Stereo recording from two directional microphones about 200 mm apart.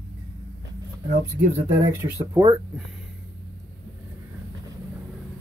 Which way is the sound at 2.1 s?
15° right (ahead or behind).